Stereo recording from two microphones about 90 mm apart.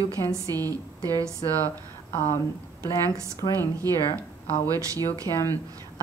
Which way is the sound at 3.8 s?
40° right (ahead or behind).